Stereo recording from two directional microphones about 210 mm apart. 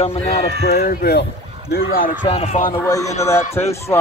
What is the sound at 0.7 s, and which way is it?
Speech, 45° left (ahead or behind).